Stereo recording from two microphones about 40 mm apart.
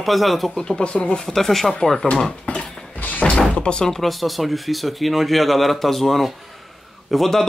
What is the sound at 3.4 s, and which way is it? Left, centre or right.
Door, left.